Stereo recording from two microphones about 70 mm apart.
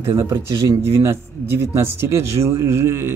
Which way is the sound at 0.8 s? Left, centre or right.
Right.